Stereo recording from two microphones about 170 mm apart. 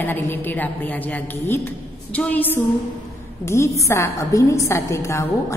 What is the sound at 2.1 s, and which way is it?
A woman's voice, 10° left (ahead or behind).